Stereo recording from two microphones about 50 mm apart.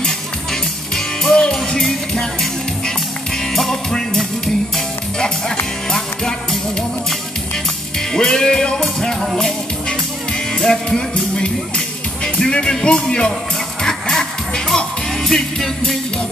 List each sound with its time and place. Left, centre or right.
0.0 s music: centre
3.5 s music: centre
5.9 s music: centre
8.1 s music: centre
9.2 s music: centre
10.5 s music: centre